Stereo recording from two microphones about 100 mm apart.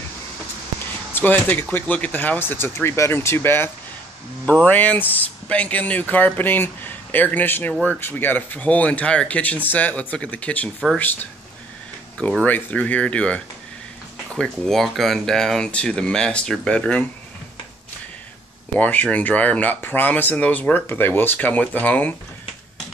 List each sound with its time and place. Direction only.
1.1 s speech: 20° left (ahead or behind)
12.4 s speech: 15° left (ahead or behind)
18.8 s speech: 15° left (ahead or behind)